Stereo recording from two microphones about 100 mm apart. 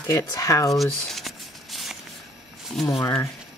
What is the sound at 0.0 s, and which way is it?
Speech, 30° left (ahead or behind).